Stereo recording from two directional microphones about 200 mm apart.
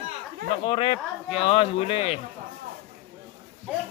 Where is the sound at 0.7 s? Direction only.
30° left (ahead or behind).